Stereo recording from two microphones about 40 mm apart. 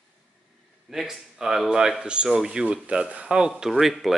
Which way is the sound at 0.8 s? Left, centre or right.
Centre.